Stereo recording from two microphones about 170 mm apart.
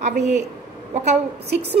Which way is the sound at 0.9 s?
40° right (ahead or behind).